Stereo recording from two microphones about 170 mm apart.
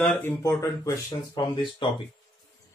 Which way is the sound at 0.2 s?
20° left (ahead or behind).